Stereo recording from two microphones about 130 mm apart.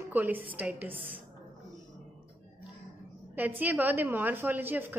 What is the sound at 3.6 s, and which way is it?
A woman's voice, 15° right (ahead or behind).